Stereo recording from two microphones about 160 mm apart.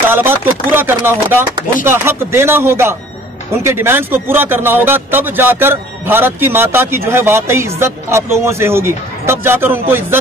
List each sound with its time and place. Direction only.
0.1 s speech: 15° right (ahead or behind)